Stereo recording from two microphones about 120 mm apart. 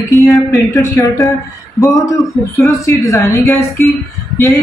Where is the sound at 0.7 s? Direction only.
30° left (ahead or behind).